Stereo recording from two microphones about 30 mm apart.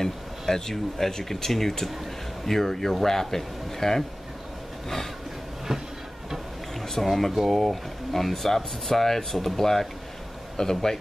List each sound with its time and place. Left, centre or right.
0.0 s speech: centre
5.7 s train: centre
7.0 s speech: centre